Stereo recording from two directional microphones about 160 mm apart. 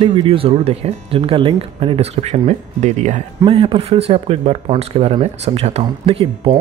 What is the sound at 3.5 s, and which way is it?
Speech, 35° right (ahead or behind).